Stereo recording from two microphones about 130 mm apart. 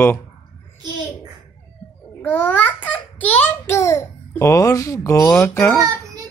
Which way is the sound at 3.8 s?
20° left (ahead or behind).